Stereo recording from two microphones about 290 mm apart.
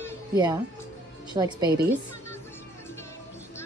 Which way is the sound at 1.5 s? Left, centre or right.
Centre.